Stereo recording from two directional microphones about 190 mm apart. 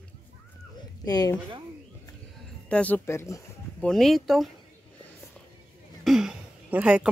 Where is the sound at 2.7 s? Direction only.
10° left (ahead or behind).